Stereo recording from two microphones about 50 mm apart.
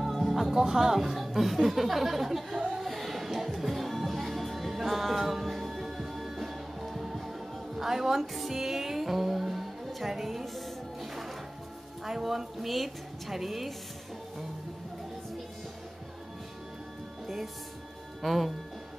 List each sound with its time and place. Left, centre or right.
0.0 s speech: centre
2.8 s music: centre
12.0 s a woman's voice: centre
18.2 s a woman's voice: centre